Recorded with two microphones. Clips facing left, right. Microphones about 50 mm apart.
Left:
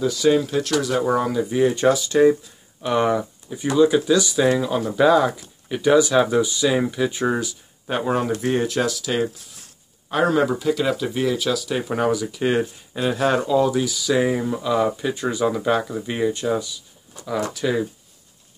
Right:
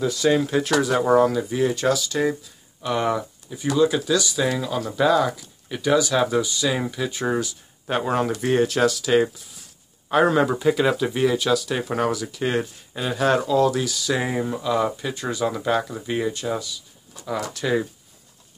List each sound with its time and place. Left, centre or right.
0.0 s speech: centre
1.2 s speech: centre
1.7 s speech: left
2.8 s speech: centre
7.8 s speech: centre
17.5 s speech: centre